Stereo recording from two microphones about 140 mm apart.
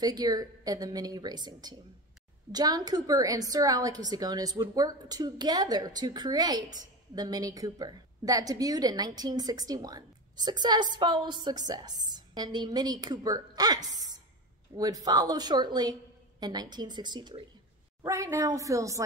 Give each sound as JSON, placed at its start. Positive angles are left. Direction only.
{"t": 0.0, "sound": "a woman's voice", "side_deg": -30}
{"t": 18.0, "sound": "a woman's voice", "side_deg": -20}